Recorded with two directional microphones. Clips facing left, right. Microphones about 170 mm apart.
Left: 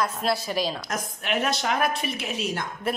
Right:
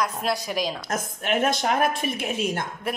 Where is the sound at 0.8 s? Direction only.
50° right (ahead or behind).